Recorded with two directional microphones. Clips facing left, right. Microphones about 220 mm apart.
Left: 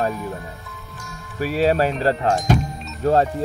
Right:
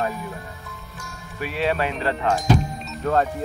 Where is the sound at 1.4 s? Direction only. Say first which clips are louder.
Left 5 dB; 40° left (ahead or behind).